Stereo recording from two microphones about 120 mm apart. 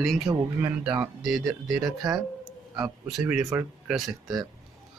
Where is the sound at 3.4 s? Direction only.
20° right (ahead or behind).